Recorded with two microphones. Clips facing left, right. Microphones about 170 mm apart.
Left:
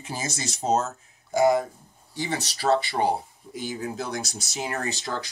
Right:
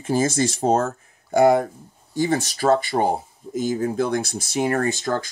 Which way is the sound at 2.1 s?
50° right (ahead or behind).